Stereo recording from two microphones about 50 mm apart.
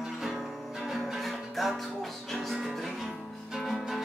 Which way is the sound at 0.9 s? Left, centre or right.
Centre.